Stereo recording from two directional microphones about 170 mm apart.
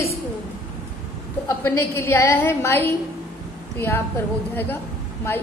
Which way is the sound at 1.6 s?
15° left (ahead or behind).